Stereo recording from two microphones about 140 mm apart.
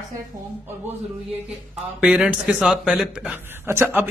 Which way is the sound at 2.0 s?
5° right (ahead or behind).